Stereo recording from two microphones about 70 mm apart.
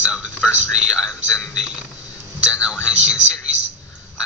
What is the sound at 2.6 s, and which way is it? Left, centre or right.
Speech, centre.